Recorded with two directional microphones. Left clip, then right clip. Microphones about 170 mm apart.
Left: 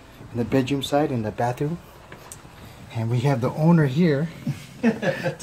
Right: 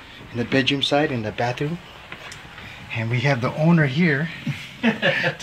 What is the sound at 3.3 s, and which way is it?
Speech, 5° left (ahead or behind).